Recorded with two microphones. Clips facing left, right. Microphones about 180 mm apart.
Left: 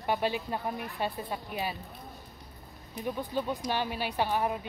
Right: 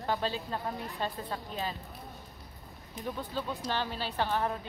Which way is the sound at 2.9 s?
15° left (ahead or behind).